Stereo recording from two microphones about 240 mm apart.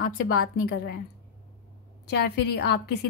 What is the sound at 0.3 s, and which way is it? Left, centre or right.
Speech, left.